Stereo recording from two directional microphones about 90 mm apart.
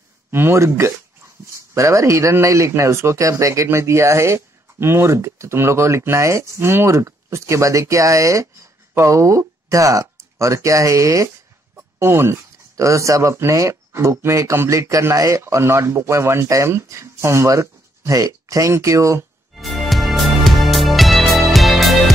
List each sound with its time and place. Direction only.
0.3 s speech: 25° right (ahead or behind)
19.5 s music: centre (ahead or behind)